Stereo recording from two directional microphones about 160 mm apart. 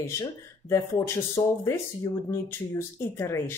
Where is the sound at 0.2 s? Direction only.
20° left (ahead or behind).